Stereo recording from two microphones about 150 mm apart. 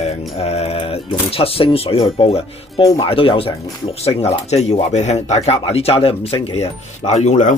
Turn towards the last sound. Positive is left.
turn(degrees=55)  # may be behind; listen again after turning